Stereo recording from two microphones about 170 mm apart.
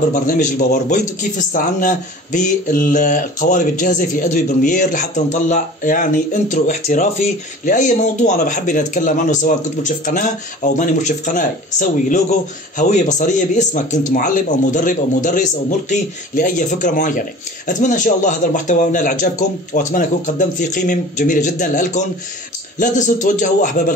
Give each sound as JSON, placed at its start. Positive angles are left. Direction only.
{"t": 0.1, "sound": "a man's voice", "side_deg": 45}